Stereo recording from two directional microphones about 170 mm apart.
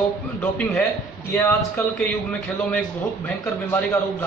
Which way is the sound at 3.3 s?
10° left (ahead or behind).